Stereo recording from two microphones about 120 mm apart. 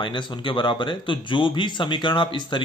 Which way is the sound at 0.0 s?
40° left (ahead or behind).